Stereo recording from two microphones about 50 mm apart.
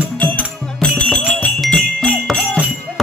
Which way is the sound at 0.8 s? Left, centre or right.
Centre.